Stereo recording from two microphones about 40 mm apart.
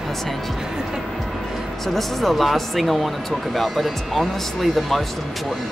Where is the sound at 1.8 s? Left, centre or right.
Centre.